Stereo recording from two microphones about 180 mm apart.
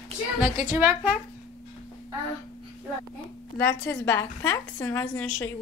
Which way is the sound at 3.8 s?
10° left (ahead or behind).